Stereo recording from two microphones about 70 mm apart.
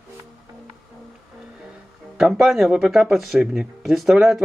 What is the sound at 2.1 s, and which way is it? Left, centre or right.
Speech, centre.